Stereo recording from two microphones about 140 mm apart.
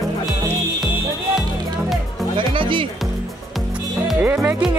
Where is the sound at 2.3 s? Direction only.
40° right (ahead or behind).